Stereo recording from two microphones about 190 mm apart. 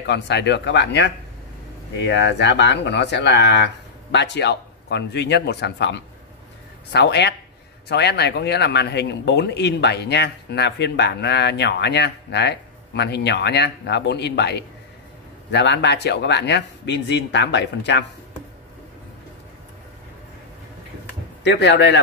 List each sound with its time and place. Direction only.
0.0 s speech: 65° left (ahead or behind)
21.5 s speech: 65° left (ahead or behind)